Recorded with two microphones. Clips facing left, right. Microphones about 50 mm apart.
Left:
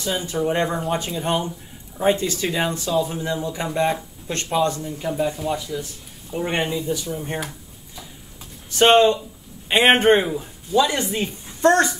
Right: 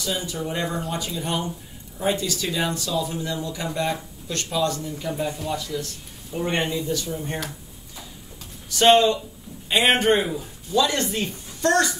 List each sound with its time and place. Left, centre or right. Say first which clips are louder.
0.0 s speech: left 5 dB; left; by 7.5 s centre
8.6 s speech: left 2 dB; left
10.2 s speech: left 2 dB; centre
11.6 s speech: left 4 dB; left